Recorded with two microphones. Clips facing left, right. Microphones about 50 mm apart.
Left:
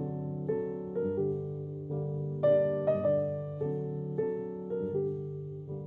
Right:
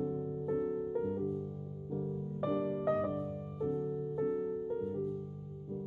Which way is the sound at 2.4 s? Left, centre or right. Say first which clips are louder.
Left 9 dB; left.